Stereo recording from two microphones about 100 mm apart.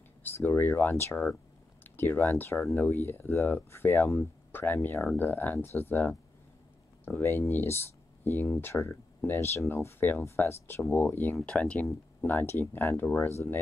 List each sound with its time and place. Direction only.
0.2 s speech: 20° left (ahead or behind)